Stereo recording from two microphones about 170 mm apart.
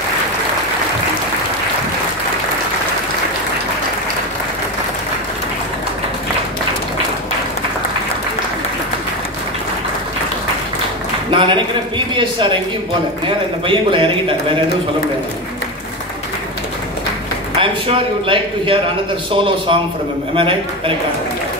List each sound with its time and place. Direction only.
11.2 s a sound: 30° right (ahead or behind)
12.2 s speech: 30° right (ahead or behind)
13.7 s a man's voice: 30° right (ahead or behind)
17.6 s a man's voice: 30° right (ahead or behind)